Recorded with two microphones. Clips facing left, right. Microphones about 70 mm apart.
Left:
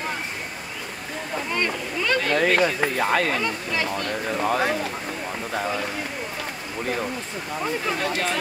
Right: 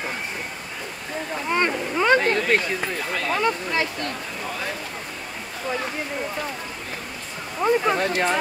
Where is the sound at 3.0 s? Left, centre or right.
Left.